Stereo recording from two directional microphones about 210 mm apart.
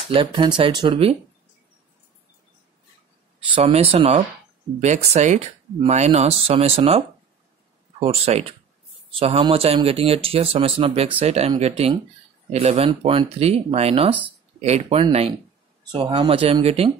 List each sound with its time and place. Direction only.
0.1 s speech: 25° right (ahead or behind)
3.6 s speech: 30° right (ahead or behind)
8.0 s speech: 30° right (ahead or behind)